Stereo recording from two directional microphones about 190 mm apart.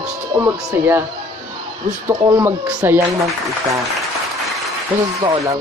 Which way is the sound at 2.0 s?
15° right (ahead or behind).